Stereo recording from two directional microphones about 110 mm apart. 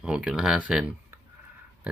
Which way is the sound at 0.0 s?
10° right (ahead or behind).